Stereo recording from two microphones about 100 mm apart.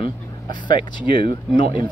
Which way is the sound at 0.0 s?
55° left (ahead or behind).